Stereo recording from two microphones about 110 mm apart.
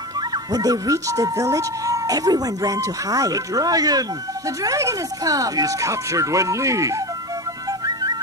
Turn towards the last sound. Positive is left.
turn(degrees=-30)  # may be behind; listen again after turning